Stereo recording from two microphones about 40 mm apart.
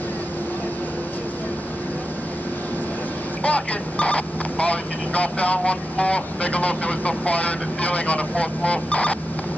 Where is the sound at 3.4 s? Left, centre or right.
Left.